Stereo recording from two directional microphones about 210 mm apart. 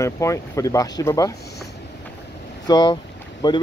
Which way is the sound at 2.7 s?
20° left (ahead or behind).